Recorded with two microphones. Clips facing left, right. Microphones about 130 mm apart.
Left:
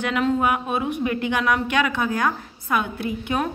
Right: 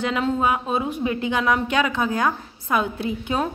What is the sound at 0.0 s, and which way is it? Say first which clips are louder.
A woman's voice: left 1 dB; 25° right (ahead or behind).